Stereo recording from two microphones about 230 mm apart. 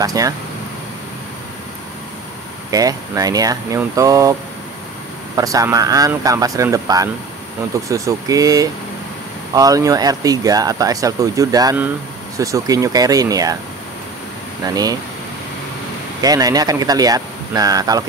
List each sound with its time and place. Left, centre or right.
0.0 s speech: centre
2.7 s speech: centre
14.6 s speech: centre
16.2 s speech: centre